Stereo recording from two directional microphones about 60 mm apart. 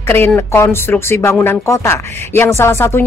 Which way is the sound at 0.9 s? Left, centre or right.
Left.